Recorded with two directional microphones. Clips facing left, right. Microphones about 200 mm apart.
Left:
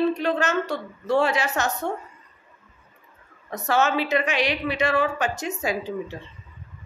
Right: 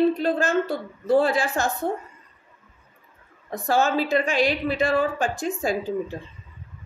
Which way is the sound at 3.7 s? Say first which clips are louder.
Right 1 dB; 35° right (ahead or behind).